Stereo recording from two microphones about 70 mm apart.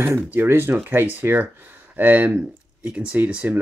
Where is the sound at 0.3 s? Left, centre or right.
Right.